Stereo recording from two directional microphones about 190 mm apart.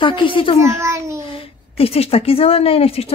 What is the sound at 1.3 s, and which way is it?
A woman's voice, 30° left (ahead or behind).